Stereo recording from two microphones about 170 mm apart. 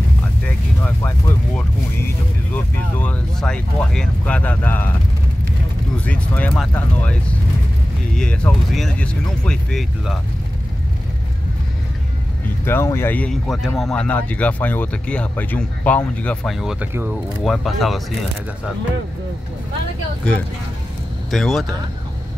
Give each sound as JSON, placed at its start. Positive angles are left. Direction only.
{"t": 0.8, "sound": "speech", "side_deg": 10}
{"t": 5.9, "sound": "speech", "side_deg": 10}
{"t": 12.6, "sound": "speech", "side_deg": 15}
{"t": 16.5, "sound": "speech", "side_deg": -5}
{"t": 21.3, "sound": "speech", "side_deg": 0}